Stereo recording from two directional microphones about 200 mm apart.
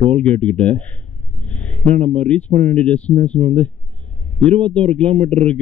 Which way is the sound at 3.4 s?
40° right (ahead or behind).